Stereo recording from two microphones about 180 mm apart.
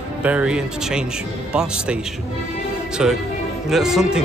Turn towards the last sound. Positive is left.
turn(degrees=-5)  # may be behind; listen again after turning